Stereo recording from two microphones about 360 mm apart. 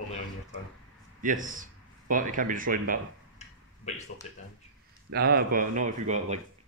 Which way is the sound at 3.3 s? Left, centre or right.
Centre.